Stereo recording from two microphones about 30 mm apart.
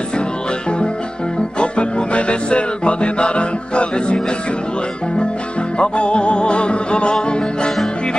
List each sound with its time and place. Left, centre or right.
1.6 s music: left
5.8 s music: left